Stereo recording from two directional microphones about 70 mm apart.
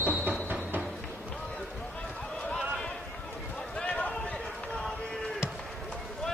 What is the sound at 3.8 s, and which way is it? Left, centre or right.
Run, centre.